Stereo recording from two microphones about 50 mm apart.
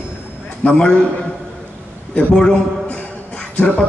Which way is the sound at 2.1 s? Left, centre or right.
Centre.